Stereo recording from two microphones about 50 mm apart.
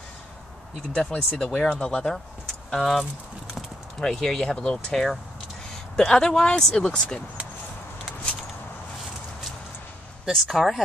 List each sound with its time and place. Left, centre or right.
0.9 s speech: centre
2.4 s speech: centre
10.3 s speech: centre